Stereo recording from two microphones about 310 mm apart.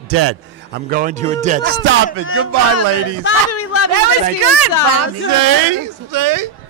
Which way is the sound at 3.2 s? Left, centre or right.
Left.